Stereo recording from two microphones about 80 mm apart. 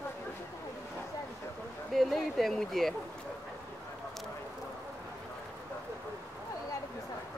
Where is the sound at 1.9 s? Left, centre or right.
Centre.